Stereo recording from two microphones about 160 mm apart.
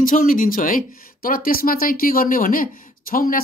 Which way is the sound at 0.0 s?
60° left (ahead or behind).